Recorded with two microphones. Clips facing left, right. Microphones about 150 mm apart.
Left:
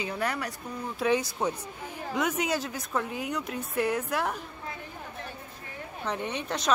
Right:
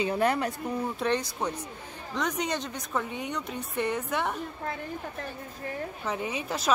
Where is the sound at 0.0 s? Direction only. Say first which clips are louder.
Right 6 dB; 25° right (ahead or behind).